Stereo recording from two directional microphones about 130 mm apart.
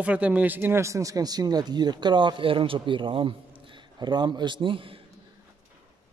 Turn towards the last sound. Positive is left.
turn(degrees=-40)  # may be behind; listen again after turning